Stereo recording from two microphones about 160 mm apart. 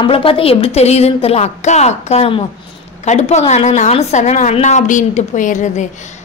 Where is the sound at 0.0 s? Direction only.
35° left (ahead or behind).